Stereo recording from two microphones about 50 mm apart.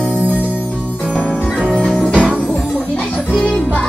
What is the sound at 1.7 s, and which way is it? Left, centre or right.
Music, centre.